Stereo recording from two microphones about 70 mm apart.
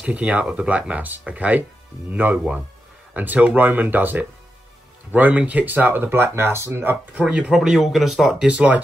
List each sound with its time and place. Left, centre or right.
0.0 s speech: centre
7.2 s speech: centre
7.5 s a man's voice: centre
8.4 s speech: centre